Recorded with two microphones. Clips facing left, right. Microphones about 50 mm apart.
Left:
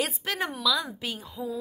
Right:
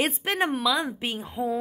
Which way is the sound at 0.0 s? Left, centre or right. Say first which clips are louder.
Right 4 dB; right.